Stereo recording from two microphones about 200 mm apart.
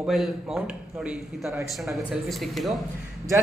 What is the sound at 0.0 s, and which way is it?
Speech, centre (ahead or behind).